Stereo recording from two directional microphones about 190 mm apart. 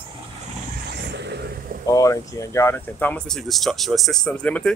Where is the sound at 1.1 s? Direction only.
60° right (ahead or behind).